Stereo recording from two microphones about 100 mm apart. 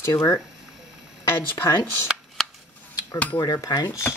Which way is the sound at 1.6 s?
25° left (ahead or behind).